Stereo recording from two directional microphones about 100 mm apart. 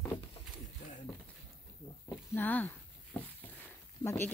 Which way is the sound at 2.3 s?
20° left (ahead or behind).